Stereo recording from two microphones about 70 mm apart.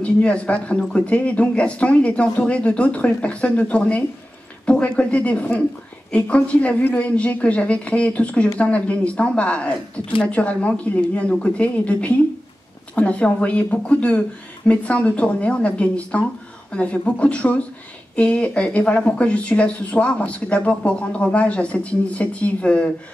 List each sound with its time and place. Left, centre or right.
0.0 s speech: centre